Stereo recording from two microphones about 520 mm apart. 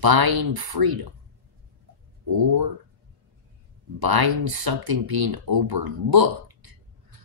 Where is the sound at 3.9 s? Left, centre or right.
Right.